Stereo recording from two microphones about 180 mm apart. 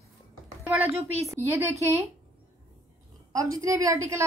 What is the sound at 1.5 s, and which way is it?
Speech, 15° right (ahead or behind).